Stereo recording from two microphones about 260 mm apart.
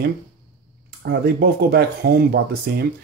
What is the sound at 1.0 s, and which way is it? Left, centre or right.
Speech, right.